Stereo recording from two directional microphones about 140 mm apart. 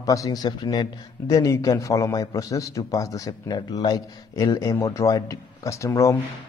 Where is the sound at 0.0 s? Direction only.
25° left (ahead or behind).